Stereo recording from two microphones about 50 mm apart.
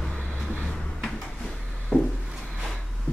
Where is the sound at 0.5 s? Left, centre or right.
Left.